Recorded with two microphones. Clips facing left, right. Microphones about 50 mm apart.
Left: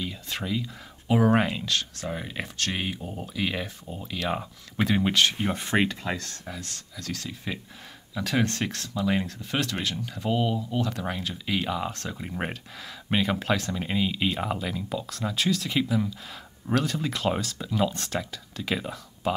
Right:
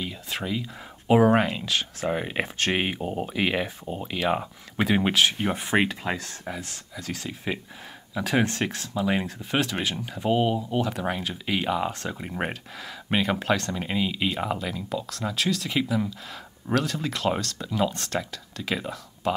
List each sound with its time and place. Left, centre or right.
0.3 s speech: centre
2.0 s speech: right
3.3 s speech: right
10.8 s speech: centre